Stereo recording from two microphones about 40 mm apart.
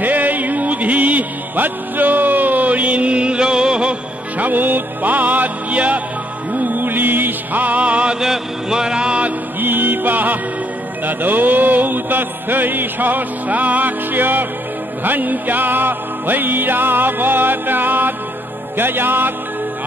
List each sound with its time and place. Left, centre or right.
0.0 s music: right
4.4 s music: right
8.1 s a sound: centre
9.6 s music: right